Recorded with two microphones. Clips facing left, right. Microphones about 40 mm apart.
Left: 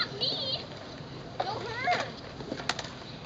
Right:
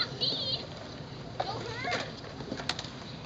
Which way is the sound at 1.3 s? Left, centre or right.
Centre.